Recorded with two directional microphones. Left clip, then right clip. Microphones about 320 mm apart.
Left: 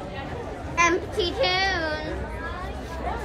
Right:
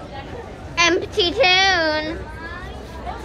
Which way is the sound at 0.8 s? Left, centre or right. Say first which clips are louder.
Right 4 dB; centre.